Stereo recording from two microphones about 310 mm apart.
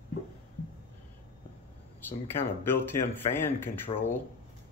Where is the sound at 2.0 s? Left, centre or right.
Centre.